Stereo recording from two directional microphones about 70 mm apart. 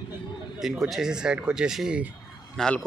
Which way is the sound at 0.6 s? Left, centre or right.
Centre.